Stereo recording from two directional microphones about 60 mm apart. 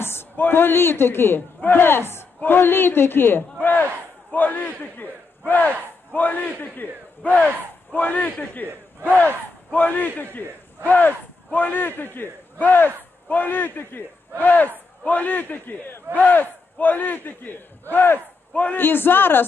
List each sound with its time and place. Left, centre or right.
0.0 s a sound: left
0.4 s a man's voice: left
18.5 s a man's voice: left
18.8 s a man's voice: left